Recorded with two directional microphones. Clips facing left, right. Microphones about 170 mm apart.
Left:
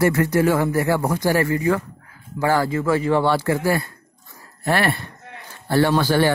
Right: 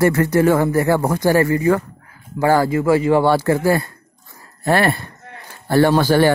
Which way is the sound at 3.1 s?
40° right (ahead or behind).